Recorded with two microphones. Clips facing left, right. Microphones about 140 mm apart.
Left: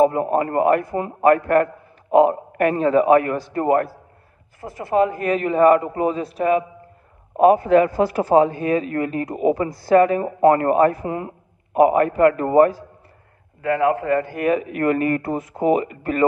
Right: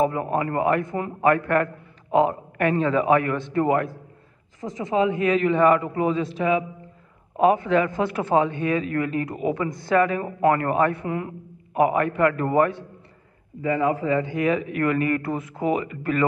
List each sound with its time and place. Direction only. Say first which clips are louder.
0.0 s speech: left 5 dB; 40° left (ahead or behind)
4.9 s speech: left 2 dB; 45° left (ahead or behind)
7.3 s speech: left 5 dB; 45° left (ahead or behind)
13.6 s speech: left 3 dB; 70° left (ahead or behind); by 16.3 s 40° left (ahead or behind)